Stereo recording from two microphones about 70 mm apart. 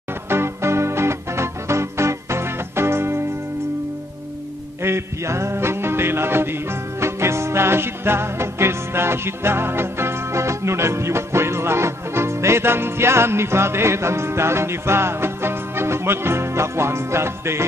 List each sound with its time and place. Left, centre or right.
0.3 s music: right
4.8 s music: right